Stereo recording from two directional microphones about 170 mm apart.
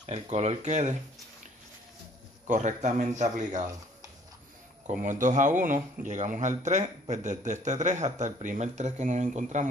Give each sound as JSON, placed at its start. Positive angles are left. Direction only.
{"t": 0.0, "sound": "speech", "side_deg": -40}
{"t": 2.4, "sound": "a man's voice", "side_deg": -45}
{"t": 5.0, "sound": "a man's voice", "side_deg": -45}